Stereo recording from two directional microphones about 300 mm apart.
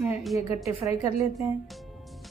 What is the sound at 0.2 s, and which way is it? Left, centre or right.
Speech, centre.